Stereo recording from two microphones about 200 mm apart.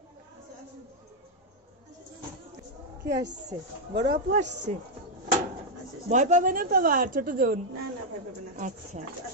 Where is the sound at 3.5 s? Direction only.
15° right (ahead or behind).